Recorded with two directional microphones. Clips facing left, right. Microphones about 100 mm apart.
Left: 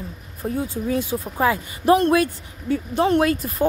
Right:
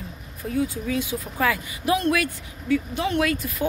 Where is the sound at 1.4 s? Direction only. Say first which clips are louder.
Left 3 dB; 30° left (ahead or behind).